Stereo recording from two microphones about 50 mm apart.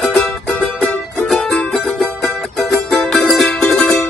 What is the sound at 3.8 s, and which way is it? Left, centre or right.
Music, left.